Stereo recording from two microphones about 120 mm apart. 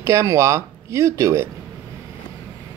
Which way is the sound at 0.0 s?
25° right (ahead or behind).